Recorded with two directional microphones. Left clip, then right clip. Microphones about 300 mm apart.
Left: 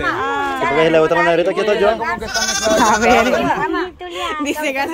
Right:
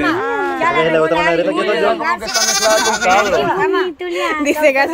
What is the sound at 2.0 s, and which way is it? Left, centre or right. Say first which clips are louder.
Speech: right 3 dB; right.